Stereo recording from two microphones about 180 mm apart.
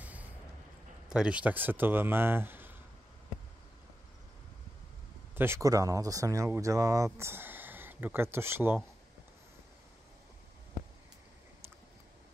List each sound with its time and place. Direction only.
1.0 s speech: 5° right (ahead or behind)
5.3 s speech: 15° right (ahead or behind)